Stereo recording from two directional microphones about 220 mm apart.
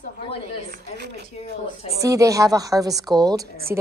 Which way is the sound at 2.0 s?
15° right (ahead or behind).